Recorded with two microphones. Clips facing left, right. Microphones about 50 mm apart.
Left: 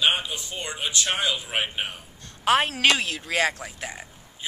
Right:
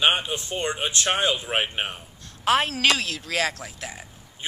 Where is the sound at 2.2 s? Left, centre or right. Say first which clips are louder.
Even; centre.